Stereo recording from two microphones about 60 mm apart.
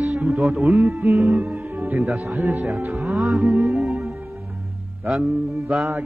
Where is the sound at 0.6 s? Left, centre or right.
Right.